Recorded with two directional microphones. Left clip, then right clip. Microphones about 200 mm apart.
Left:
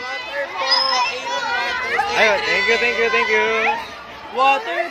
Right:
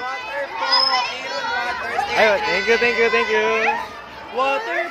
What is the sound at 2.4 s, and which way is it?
Speech, 30° right (ahead or behind).